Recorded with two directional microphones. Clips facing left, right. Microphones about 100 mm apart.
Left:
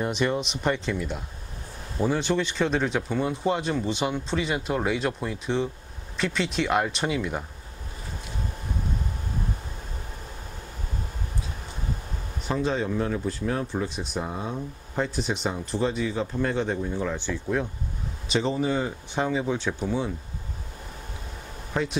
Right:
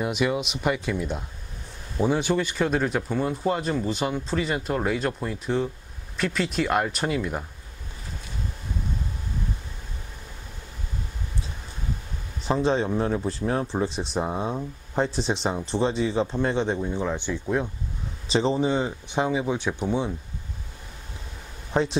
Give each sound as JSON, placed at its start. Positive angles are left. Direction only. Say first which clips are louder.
{"t": 0.0, "sound": "speech", "louder": "right 1 dB", "side_deg": -5}
{"t": 12.4, "sound": "speech", "louder": "right 3 dB", "side_deg": -30}
{"t": 18.3, "sound": "speech", "louder": "right 2 dB", "side_deg": -30}
{"t": 21.7, "sound": "speech", "louder": "right 4 dB", "side_deg": -30}